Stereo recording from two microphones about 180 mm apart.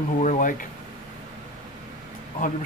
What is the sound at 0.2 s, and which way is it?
Speech, 45° left (ahead or behind).